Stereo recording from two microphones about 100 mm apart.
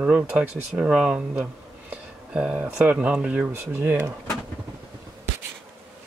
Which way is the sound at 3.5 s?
25° right (ahead or behind).